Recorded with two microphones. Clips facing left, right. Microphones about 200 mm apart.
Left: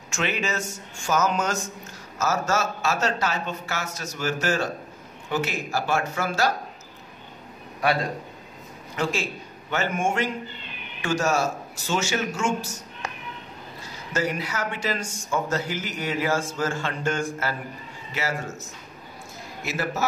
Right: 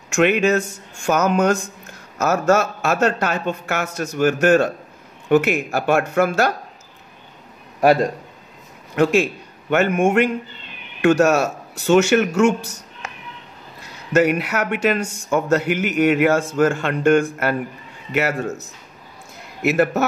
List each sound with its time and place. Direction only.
0.1 s a man's voice: 60° right (ahead or behind)
7.8 s a man's voice: 50° right (ahead or behind)
8.9 s a man's voice: 60° right (ahead or behind)
14.1 s a man's voice: 65° right (ahead or behind)